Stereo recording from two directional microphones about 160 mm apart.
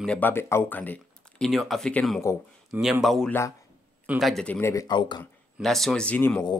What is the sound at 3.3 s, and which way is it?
Speech, 15° left (ahead or behind).